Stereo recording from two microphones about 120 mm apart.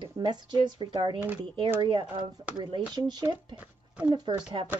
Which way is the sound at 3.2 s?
15° right (ahead or behind).